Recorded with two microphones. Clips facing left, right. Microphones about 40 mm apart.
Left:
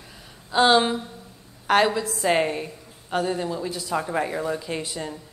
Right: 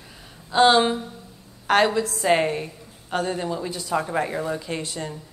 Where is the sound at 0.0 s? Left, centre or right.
Centre.